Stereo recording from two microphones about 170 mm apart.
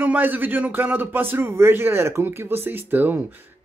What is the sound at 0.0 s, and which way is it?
A man's voice, 10° right (ahead or behind).